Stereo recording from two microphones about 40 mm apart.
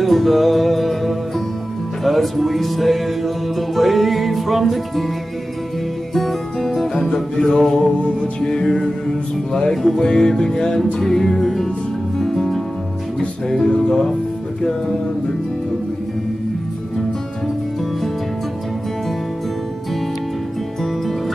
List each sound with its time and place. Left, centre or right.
0.0 s music: centre
6.1 s music: centre